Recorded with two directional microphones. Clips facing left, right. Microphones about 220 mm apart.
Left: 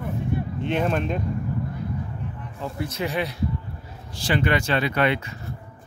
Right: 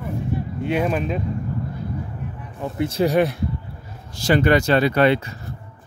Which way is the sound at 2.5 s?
20° right (ahead or behind).